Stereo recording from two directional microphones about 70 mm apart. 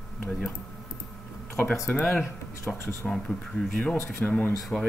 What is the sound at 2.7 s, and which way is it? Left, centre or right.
Speech, centre.